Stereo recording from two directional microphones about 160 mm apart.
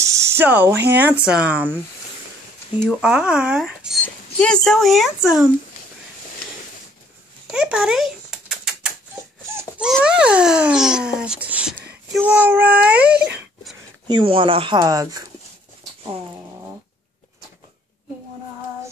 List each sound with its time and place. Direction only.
0.1 s a sound: 15° right (ahead or behind)
1.2 s speech: 5° right (ahead or behind)
2.8 s speech: 5° right (ahead or behind)
4.0 s speech: 5° left (ahead or behind)
7.5 s a sound: 5° right (ahead or behind)
9.8 s speech: 5° right (ahead or behind)
14.0 s speech: 30° right (ahead or behind)